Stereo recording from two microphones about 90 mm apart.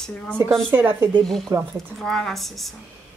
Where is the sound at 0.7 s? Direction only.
25° right (ahead or behind).